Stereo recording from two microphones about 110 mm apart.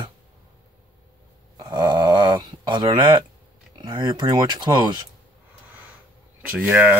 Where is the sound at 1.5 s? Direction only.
40° right (ahead or behind).